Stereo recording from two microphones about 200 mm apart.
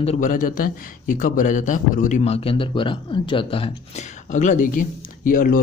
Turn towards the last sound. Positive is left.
turn(degrees=45)  # may be behind; listen again after turning